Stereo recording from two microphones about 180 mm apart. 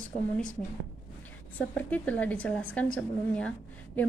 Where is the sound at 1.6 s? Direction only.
5° left (ahead or behind).